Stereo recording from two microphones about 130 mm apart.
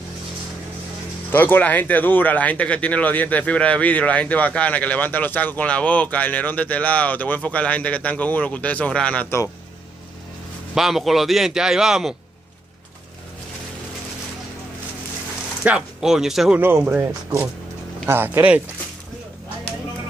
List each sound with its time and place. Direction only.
1.3 s speech: 15° left (ahead or behind)
10.7 s a man's voice: centre (ahead or behind)
15.6 s a man's voice: 5° right (ahead or behind)
16.5 s speech: 15° right (ahead or behind)